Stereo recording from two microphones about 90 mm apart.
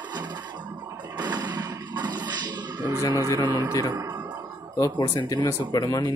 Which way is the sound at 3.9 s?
45° right (ahead or behind).